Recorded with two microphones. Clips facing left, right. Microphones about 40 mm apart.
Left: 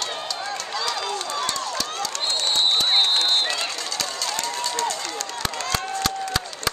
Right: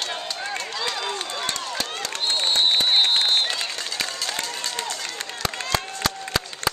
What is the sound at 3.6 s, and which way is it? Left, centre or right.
Run, centre.